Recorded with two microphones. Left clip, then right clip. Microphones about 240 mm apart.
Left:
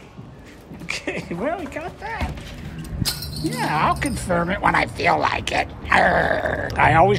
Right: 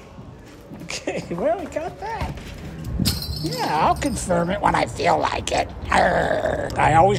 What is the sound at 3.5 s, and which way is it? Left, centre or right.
Speech, centre.